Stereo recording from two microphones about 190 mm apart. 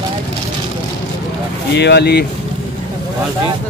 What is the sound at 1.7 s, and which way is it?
Speech, 60° left (ahead or behind).